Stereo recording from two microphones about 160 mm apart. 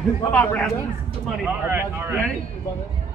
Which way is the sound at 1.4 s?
15° right (ahead or behind).